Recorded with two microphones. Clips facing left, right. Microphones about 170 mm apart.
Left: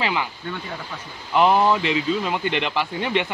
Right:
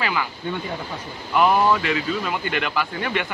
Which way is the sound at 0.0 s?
25° left (ahead or behind).